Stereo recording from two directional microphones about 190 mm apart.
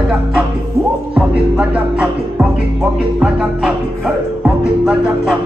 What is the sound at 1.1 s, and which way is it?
Music, 5° right (ahead or behind).